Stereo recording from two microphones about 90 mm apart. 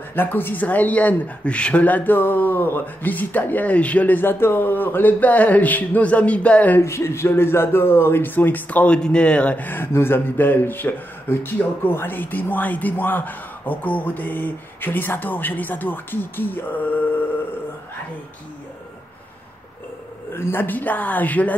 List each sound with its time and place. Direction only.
0.1 s speech: 25° left (ahead or behind)
6.8 s speech: 30° left (ahead or behind)
20.3 s speech: 25° left (ahead or behind)